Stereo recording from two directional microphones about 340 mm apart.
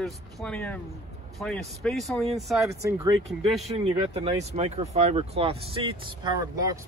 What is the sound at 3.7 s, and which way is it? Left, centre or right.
Speech, centre.